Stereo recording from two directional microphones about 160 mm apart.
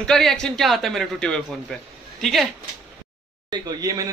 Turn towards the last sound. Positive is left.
turn(degrees=-25)  # may be behind; listen again after turning